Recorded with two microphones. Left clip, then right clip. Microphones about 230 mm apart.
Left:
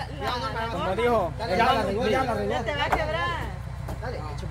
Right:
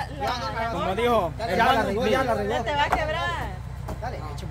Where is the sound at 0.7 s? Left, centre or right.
Right.